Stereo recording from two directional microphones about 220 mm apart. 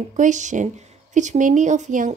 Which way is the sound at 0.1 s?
35° right (ahead or behind).